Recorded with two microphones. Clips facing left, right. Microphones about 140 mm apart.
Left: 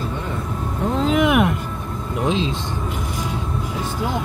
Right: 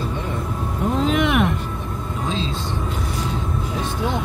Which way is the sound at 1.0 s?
5° left (ahead or behind).